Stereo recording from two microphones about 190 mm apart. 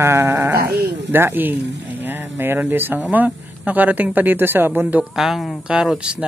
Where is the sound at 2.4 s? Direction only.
10° right (ahead or behind).